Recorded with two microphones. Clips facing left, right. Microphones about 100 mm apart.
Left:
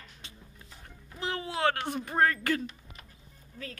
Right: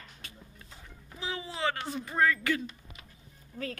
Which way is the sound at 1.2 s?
60° left (ahead or behind).